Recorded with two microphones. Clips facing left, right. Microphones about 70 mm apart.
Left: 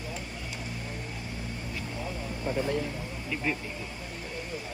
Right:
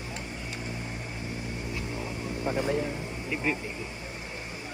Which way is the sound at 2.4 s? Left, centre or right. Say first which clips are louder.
Right 1 dB; right.